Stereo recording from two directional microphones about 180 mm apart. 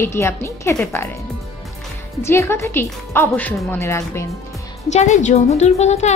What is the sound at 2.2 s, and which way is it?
A woman's voice, 15° left (ahead or behind).